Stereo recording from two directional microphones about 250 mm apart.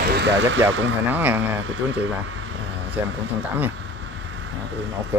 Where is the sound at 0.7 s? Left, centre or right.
Right.